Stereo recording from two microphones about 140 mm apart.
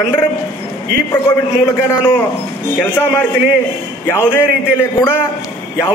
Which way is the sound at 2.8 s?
10° left (ahead or behind).